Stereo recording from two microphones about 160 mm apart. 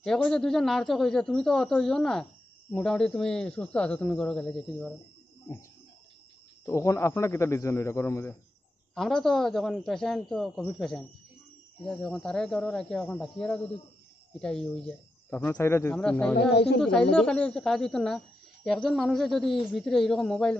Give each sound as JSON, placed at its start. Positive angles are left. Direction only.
{"t": 0.0, "sound": "speech", "side_deg": 5}
{"t": 6.6, "sound": "speech", "side_deg": 20}
{"t": 8.9, "sound": "speech", "side_deg": 0}
{"t": 16.0, "sound": "speech", "side_deg": 5}
{"t": 16.3, "sound": "speech", "side_deg": 90}
{"t": 17.1, "sound": "speech", "side_deg": 5}